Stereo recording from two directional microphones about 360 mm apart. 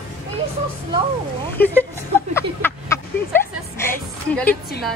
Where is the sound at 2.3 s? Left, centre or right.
Centre.